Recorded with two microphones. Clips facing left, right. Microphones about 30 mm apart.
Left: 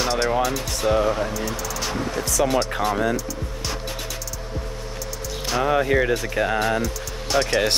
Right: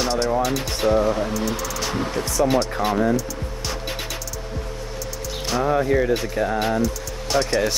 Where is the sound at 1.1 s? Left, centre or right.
Centre.